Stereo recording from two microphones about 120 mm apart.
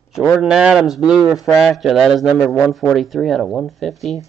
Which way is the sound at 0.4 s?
5° right (ahead or behind).